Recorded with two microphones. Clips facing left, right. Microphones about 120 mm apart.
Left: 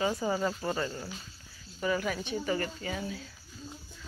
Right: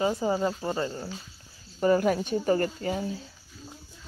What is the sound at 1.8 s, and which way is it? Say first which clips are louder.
Speech: right 8 dB; 45° right (ahead or behind).